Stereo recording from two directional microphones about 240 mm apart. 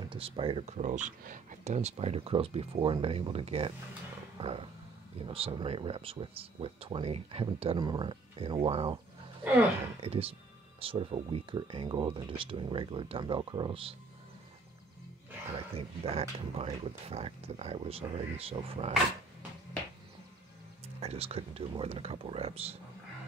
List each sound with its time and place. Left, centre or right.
0.1 s speech: right
15.7 s speech: right
21.0 s speech: right